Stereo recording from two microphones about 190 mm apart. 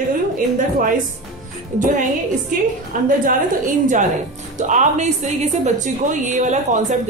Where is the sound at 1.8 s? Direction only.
40° right (ahead or behind).